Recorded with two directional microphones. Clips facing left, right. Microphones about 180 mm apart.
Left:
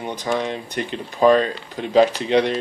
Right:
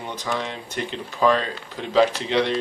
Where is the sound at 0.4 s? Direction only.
15° left (ahead or behind).